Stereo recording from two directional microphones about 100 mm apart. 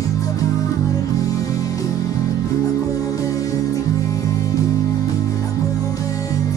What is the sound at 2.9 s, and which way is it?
Music, 35° left (ahead or behind).